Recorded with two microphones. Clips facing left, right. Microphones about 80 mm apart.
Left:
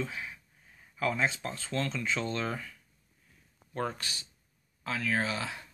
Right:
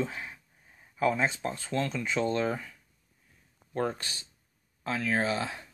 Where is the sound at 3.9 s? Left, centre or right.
Right.